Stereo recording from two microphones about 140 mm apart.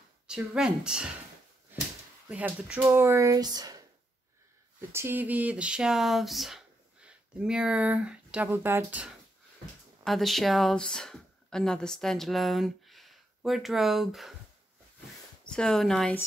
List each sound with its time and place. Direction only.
0.3 s speech: 5° right (ahead or behind)
2.2 s speech: 10° right (ahead or behind); by 3.8 s 25° right (ahead or behind)
4.9 s speech: 15° right (ahead or behind)
10.0 s speech: centre (ahead or behind)
15.4 s speech: 5° left (ahead or behind)